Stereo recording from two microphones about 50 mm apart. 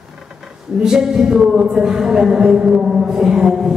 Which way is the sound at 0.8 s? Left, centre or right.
Centre.